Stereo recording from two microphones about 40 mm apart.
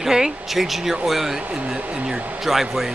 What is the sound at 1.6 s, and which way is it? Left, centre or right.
Speech, centre.